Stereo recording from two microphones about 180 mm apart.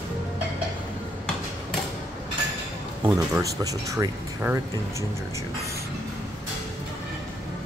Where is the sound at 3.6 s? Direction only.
20° right (ahead or behind).